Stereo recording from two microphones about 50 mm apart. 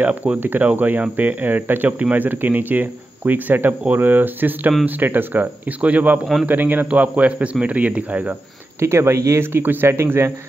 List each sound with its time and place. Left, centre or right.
0.0 s speech: right
8.7 s speech: right
9.4 s speech: right
9.8 s speech: right